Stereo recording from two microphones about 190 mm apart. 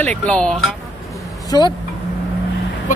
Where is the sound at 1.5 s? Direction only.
20° left (ahead or behind).